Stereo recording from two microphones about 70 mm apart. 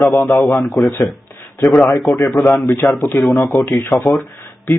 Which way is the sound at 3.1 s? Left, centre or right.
Centre.